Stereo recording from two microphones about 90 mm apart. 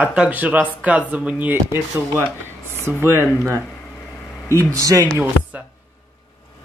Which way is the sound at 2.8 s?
30° right (ahead or behind).